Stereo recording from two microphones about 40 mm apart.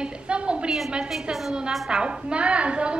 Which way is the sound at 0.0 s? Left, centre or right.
Right.